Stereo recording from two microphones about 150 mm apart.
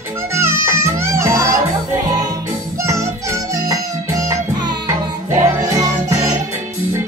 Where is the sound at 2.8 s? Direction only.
20° right (ahead or behind).